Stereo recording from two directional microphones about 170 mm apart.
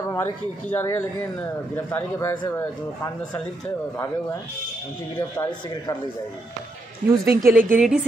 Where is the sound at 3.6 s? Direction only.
15° left (ahead or behind).